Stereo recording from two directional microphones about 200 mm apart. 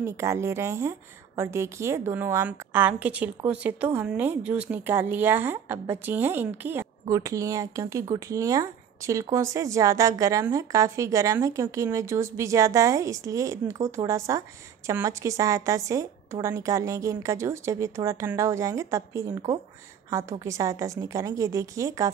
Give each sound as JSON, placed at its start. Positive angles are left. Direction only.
{"t": 0.0, "sound": "a woman's voice", "side_deg": -15}